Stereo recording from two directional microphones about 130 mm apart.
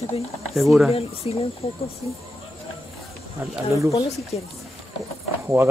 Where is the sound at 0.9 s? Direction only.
50° left (ahead or behind).